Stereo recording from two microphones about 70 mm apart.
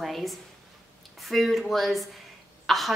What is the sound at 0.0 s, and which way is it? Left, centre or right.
A woman's voice, centre.